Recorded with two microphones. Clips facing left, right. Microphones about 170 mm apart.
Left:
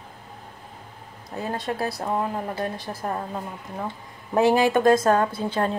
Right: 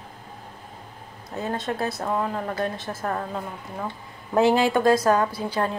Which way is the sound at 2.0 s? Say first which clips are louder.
Even; 15° left (ahead or behind).